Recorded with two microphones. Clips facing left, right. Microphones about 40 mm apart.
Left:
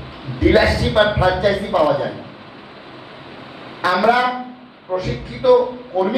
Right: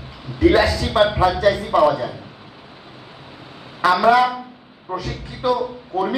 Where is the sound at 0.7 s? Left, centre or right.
Centre.